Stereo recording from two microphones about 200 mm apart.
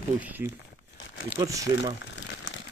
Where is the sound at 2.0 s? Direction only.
70° left (ahead or behind).